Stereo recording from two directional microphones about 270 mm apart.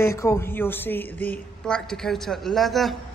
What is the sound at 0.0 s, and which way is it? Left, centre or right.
A woman's voice, centre.